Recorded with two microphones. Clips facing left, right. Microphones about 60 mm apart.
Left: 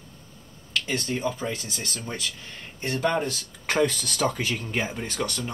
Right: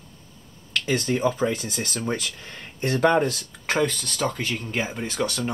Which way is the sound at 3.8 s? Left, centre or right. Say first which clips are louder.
Left 1 dB; centre.